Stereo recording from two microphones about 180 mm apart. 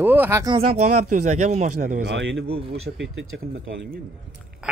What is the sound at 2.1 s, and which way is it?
Speech, 85° right.